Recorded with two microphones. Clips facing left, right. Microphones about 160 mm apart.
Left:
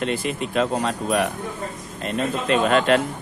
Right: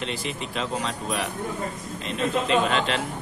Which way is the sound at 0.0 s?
55° left (ahead or behind).